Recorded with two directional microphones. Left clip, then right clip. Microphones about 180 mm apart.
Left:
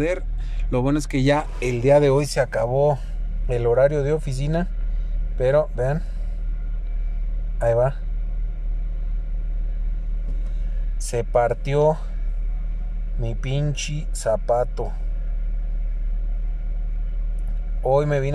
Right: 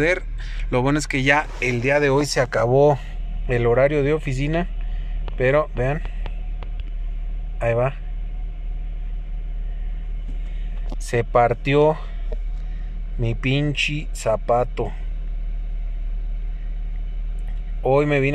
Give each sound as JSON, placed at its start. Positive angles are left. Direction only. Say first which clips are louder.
{"t": 0.0, "sound": "speech", "louder": "right 4 dB", "side_deg": 10}
{"t": 11.1, "sound": "speech", "louder": "right 2 dB", "side_deg": 10}
{"t": 13.2, "sound": "a man's voice", "louder": "right 6 dB", "side_deg": 5}
{"t": 17.8, "sound": "speech", "louder": "right 2 dB", "side_deg": 10}